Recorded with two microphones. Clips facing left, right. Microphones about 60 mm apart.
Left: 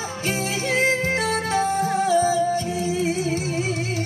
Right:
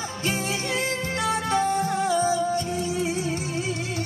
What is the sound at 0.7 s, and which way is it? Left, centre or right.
Music, left.